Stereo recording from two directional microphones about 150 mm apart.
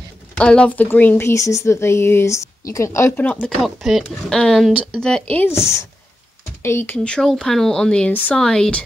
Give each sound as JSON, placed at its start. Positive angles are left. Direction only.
{"t": 0.4, "sound": "speech", "side_deg": 5}
{"t": 3.3, "sound": "speech", "side_deg": 0}
{"t": 7.0, "sound": "speech", "side_deg": 5}